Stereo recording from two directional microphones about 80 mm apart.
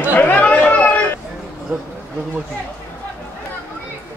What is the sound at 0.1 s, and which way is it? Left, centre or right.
Chatter, left.